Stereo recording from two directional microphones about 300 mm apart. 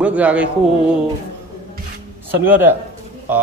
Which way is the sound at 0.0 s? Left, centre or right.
Centre.